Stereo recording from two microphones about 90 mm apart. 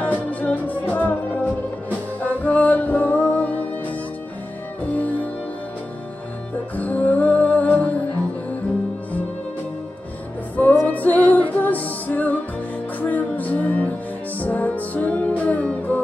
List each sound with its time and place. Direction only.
0.0 s music: 15° left (ahead or behind)
4.8 s music: 15° left (ahead or behind)
6.8 s music: 15° left (ahead or behind)
10.5 s music: 20° left (ahead or behind)